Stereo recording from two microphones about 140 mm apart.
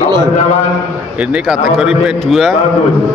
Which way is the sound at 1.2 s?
5° right (ahead or behind).